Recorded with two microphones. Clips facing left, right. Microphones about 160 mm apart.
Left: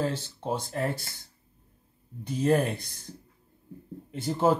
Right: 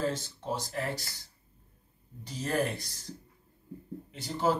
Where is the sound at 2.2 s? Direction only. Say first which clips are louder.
Left 6 dB; 55° left (ahead or behind).